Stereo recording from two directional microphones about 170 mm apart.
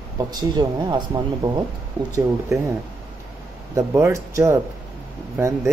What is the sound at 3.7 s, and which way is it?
Speech, 15° right (ahead or behind).